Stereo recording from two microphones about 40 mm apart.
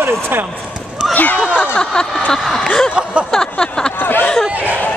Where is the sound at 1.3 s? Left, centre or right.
Right.